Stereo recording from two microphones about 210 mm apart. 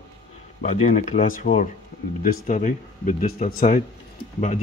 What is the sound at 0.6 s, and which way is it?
Speech, 35° left (ahead or behind).